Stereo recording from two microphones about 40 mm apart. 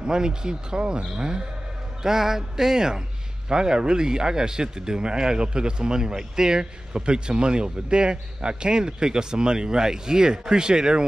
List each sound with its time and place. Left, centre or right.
0.0 s a man's voice: centre
2.0 s music: centre
3.4 s a man's voice: centre